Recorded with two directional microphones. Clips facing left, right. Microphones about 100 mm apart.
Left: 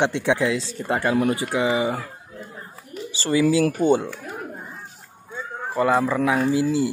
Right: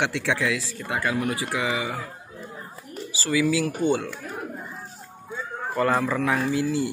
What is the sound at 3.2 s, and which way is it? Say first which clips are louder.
Speech: left 4 dB; 30° left (ahead or behind).